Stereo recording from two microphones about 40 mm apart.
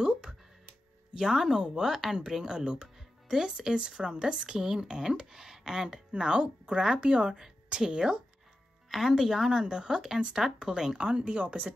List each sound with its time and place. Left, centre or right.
0.0 s music: centre
1.1 s speech: centre
8.9 s speech: centre; by 11.7 s right